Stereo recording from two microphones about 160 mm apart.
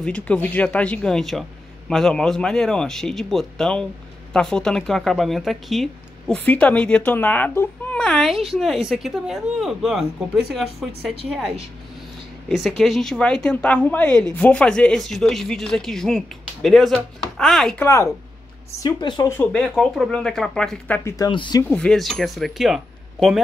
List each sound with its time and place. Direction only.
0.0 s speech: 10° left (ahead or behind)
17.7 s a woman's voice: 15° left (ahead or behind)
19.4 s speech: 5° left (ahead or behind)
21.3 s a woman's voice: 30° left (ahead or behind)
21.6 s speech: 5° left (ahead or behind)